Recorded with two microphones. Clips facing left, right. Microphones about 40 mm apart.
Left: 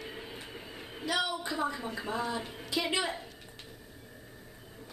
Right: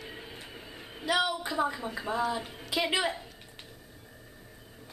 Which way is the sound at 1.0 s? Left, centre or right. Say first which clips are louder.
Right 3 dB; centre.